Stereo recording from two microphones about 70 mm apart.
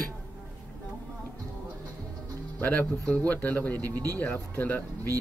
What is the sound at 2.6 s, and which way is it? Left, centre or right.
Speech, left.